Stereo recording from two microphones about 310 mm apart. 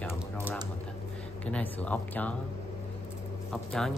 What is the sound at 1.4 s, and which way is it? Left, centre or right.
Speech, centre.